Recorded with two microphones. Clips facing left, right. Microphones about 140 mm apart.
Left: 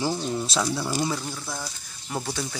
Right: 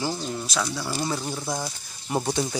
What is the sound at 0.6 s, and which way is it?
Speech, 5° left (ahead or behind).